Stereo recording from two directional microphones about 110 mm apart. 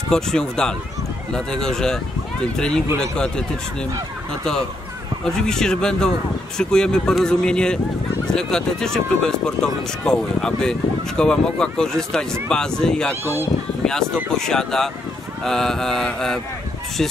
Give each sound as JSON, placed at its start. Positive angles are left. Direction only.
{"t": 0.1, "sound": "speech", "side_deg": 5}
{"t": 5.2, "sound": "speech", "side_deg": 5}
{"t": 13.2, "sound": "speech", "side_deg": -20}
{"t": 13.8, "sound": "speech", "side_deg": 5}